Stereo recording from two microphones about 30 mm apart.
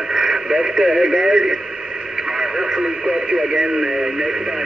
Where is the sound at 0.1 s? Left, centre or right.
Centre.